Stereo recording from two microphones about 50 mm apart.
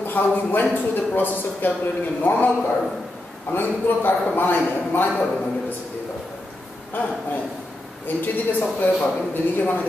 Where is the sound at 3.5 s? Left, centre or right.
Left.